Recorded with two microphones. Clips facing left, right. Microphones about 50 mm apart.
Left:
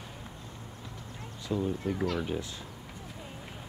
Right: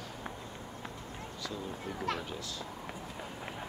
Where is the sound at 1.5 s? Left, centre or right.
Left.